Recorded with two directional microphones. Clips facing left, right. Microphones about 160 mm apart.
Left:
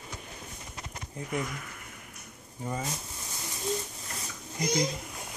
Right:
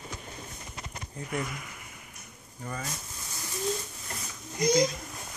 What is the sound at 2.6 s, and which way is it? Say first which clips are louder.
Speech: left 3 dB; 20° left (ahead or behind).